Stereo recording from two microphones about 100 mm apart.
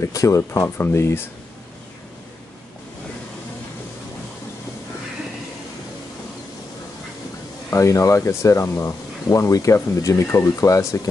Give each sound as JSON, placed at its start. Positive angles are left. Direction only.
{"t": 0.0, "sound": "speech", "side_deg": 30}
{"t": 7.7, "sound": "speech", "side_deg": 30}